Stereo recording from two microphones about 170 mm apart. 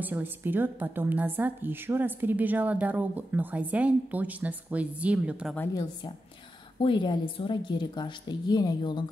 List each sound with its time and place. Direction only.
0.0 s a woman's voice: 10° right (ahead or behind)
6.8 s a woman's voice: 30° left (ahead or behind)